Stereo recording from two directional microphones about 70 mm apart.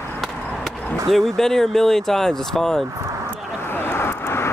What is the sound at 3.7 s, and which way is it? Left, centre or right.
Vehicle, left.